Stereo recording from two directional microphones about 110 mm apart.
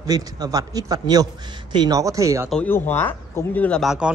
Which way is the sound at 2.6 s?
15° left (ahead or behind).